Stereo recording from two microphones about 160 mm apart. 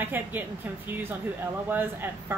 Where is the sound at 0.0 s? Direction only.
10° right (ahead or behind).